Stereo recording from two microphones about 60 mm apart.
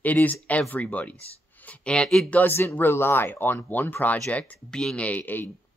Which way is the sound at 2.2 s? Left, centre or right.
Left.